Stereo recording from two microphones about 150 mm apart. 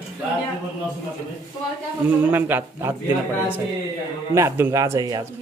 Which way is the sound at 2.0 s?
10° right (ahead or behind).